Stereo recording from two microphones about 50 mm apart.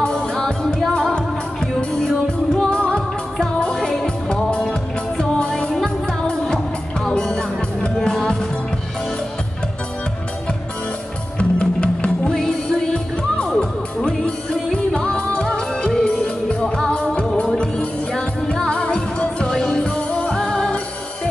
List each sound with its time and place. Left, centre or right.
0.0 s music: centre
11.3 s music: left
12.3 s music: centre
16.6 s music: centre